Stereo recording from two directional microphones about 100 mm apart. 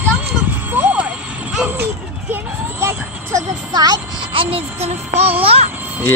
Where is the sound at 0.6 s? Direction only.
20° right (ahead or behind).